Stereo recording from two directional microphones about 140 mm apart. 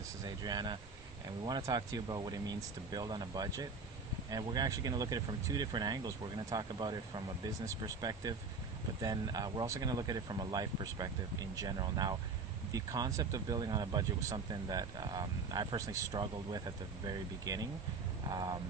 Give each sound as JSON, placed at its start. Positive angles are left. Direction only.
{"t": 0.2, "sound": "speech", "side_deg": -30}